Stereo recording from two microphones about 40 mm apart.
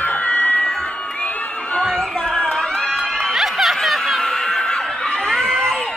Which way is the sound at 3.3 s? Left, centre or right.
Centre.